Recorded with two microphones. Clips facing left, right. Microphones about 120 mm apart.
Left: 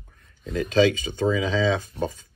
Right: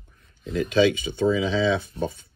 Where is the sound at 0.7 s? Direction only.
40° left (ahead or behind).